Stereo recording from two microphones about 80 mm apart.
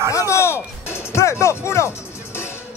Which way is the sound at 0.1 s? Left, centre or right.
Left.